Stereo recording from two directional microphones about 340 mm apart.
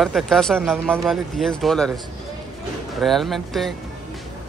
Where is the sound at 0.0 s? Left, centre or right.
Centre.